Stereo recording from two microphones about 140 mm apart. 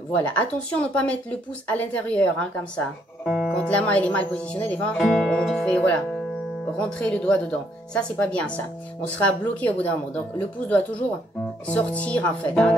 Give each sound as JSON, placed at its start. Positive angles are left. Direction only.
{"t": 0.1, "sound": "speech", "side_deg": 10}
{"t": 11.6, "sound": "speech", "side_deg": 10}